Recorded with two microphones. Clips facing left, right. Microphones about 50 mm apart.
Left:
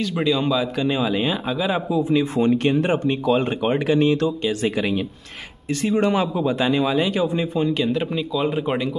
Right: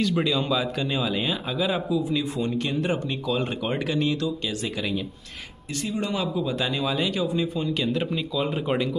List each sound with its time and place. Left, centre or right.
0.0 s a man's voice: centre
0.8 s a man's voice: centre
1.9 s speech: left
2.3 s speech: left
5.8 s speech: left
7.7 s a man's voice: centre